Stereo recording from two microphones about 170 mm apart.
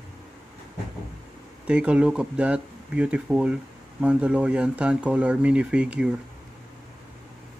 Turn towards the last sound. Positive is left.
turn(degrees=-5)  # may be behind; listen again after turning